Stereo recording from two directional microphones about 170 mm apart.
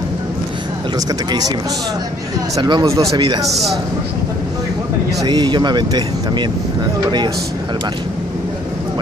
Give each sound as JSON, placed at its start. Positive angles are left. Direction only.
{"t": 0.9, "sound": "speech", "side_deg": -20}
{"t": 2.5, "sound": "speech", "side_deg": -25}
{"t": 3.4, "sound": "a man's voice", "side_deg": 0}
{"t": 5.2, "sound": "speech", "side_deg": -25}